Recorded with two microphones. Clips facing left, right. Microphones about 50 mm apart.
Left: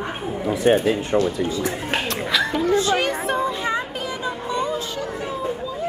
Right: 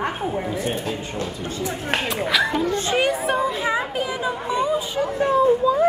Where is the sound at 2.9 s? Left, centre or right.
Centre.